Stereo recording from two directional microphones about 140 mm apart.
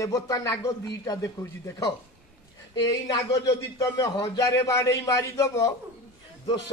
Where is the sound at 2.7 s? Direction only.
30° left (ahead or behind).